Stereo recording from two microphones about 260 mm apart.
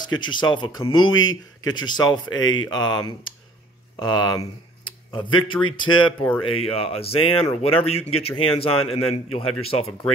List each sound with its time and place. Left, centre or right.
0.2 s a man's voice: centre